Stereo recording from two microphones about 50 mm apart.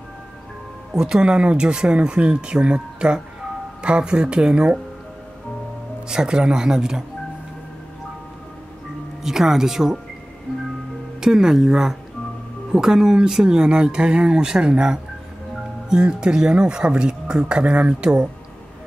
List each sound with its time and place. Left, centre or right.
0.9 s speech: centre
6.0 s speech: centre
9.2 s speech: centre
11.1 s speech: centre